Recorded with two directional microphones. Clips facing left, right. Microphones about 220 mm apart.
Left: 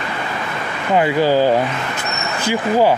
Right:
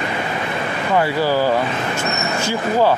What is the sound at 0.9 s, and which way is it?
Speech, 20° left (ahead or behind).